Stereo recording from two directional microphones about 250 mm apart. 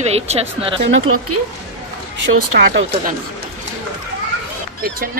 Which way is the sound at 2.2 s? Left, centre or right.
Right.